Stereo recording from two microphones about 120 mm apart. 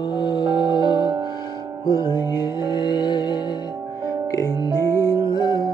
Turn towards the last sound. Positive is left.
turn(degrees=40)  # may be behind; listen again after turning